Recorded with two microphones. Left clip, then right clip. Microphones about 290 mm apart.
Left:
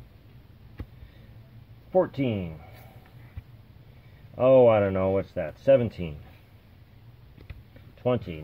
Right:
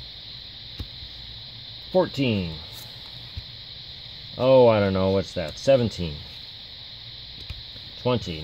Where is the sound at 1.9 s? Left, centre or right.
Centre.